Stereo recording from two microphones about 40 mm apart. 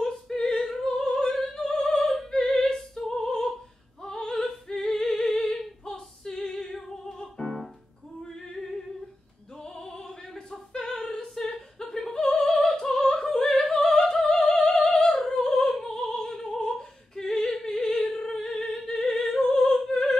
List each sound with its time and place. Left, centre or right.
0.0 s opera: centre
7.4 s music: centre
8.2 s opera: centre
18.1 s singing: centre